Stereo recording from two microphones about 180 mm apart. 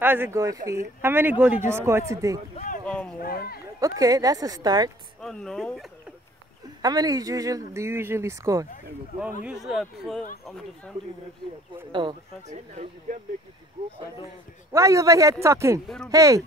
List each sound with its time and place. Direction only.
0.0 s speech: 10° right (ahead or behind)
2.5 s a sound: 45° left (ahead or behind)
2.8 s a sound: 5° left (ahead or behind)
3.2 s speech: 60° left (ahead or behind)
3.8 s speech: 20° right (ahead or behind)
5.2 s speech: 5° left (ahead or behind)
6.8 s speech: 20° right (ahead or behind)
9.4 s speech: 5° right (ahead or behind)
11.9 s speech: 25° right (ahead or behind)
12.4 s speech: 40° right (ahead or behind)
14.7 s speech: 15° right (ahead or behind)